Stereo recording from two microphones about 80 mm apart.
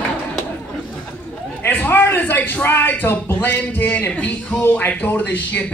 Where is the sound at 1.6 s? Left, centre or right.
Left.